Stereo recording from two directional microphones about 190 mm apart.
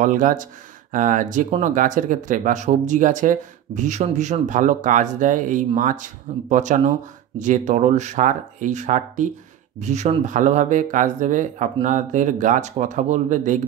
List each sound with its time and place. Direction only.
0.0 s speech: 45° right (ahead or behind)